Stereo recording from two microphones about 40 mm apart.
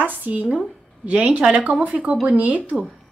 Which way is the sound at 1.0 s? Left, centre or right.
Right.